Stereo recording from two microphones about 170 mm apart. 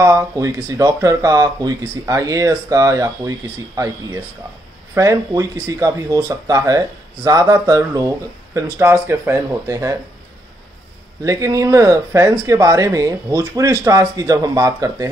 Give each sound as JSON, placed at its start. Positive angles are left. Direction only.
{"t": 0.0, "sound": "speech", "side_deg": -20}
{"t": 11.2, "sound": "speech", "side_deg": -20}